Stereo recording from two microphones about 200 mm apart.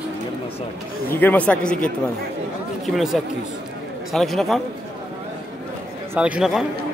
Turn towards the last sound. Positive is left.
turn(degrees=-5)  # may be behind; listen again after turning